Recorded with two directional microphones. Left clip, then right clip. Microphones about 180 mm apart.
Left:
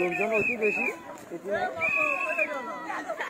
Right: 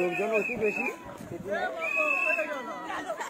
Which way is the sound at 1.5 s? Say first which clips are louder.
Left 3 dB; centre (ahead or behind).